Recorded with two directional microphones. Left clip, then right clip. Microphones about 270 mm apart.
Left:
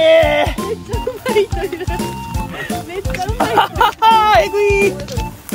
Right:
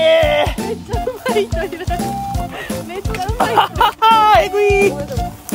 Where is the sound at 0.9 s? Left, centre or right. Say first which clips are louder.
Right 1 dB; centre.